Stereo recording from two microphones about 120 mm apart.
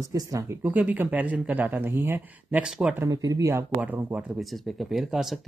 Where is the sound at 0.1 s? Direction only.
30° right (ahead or behind).